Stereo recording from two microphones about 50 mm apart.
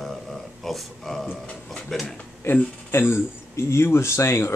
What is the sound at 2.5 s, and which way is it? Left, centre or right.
Speech, left.